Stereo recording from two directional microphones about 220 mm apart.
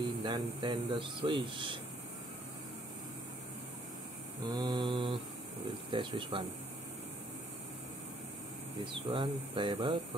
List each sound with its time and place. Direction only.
0.0 s speech: 20° right (ahead or behind)
4.5 s speech: 20° right (ahead or behind)
9.1 s speech: 20° right (ahead or behind)